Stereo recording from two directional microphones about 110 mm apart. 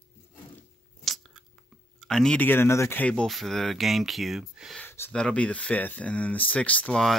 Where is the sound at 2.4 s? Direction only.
20° left (ahead or behind).